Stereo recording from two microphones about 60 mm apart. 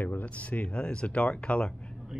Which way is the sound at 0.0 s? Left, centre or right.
Left.